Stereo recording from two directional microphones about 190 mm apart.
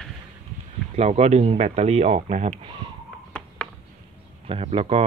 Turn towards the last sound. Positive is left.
turn(degrees=-30)  # may be behind; listen again after turning